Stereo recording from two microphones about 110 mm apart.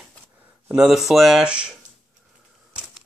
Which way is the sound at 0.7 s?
5° right (ahead or behind).